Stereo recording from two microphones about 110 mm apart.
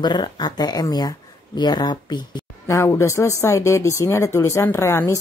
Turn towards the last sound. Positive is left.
turn(degrees=25)  # may be behind; listen again after turning